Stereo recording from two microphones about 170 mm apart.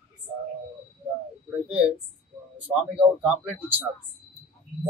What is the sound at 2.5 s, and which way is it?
Speech, 5° right (ahead or behind).